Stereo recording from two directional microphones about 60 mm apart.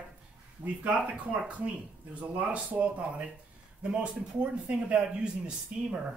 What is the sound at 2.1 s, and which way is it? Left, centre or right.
Speech, right.